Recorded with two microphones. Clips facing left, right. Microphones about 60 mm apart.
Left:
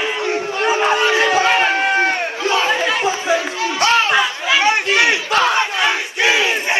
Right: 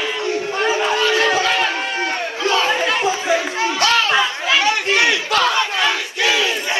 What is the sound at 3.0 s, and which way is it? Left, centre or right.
Chatter, left.